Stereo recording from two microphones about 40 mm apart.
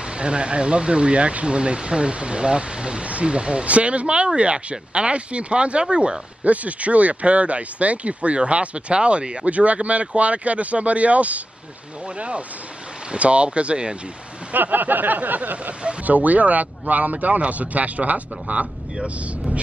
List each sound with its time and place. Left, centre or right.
0.0 s speech: right
6.4 s speech: right
14.5 s speech: right